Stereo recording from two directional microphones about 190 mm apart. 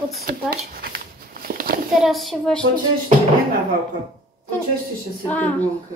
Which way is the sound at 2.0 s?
Centre (ahead or behind).